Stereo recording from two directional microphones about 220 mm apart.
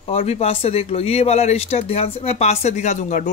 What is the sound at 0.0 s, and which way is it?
Speech, 25° left (ahead or behind).